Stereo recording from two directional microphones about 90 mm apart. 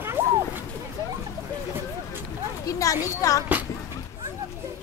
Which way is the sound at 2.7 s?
40° left (ahead or behind).